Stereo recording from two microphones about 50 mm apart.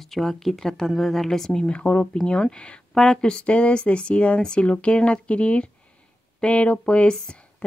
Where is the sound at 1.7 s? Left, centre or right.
Left.